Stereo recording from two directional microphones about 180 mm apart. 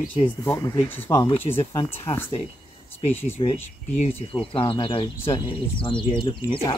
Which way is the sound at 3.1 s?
10° left (ahead or behind).